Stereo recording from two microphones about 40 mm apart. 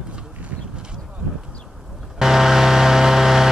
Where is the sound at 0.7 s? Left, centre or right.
Right.